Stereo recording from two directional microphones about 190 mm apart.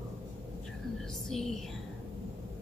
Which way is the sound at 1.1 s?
Centre (ahead or behind).